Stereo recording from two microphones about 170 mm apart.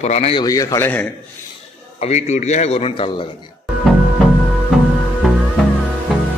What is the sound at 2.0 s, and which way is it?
A man's voice, 40° left (ahead or behind).